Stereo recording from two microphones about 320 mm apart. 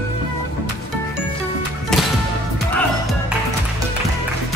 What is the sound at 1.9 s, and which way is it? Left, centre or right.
Music, centre.